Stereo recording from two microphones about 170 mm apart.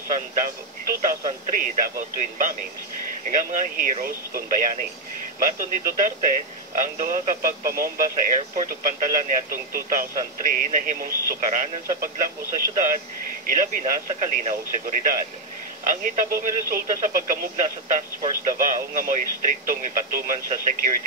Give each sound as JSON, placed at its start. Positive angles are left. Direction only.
{"t": 0.1, "sound": "speech", "side_deg": -50}
{"t": 13.5, "sound": "speech", "side_deg": -50}